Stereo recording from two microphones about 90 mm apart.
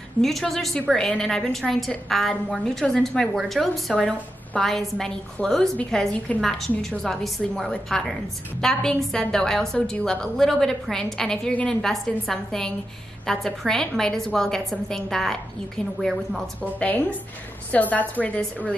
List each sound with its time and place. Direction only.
0.2 s a woman's voice: centre (ahead or behind)
16.8 s a woman's voice: 20° left (ahead or behind)